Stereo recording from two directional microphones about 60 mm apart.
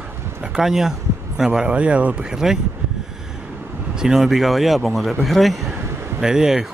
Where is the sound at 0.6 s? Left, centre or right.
Centre.